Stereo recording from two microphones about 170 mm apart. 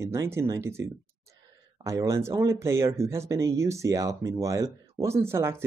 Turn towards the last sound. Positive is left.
turn(degrees=-15)  # may be behind; listen again after turning